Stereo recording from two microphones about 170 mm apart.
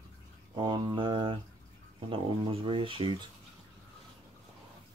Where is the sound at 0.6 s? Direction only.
25° right (ahead or behind).